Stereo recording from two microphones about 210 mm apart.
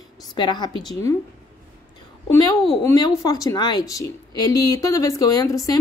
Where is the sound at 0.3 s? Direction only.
20° left (ahead or behind).